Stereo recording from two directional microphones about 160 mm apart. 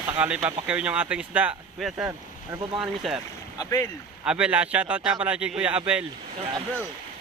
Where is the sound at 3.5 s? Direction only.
20° left (ahead or behind).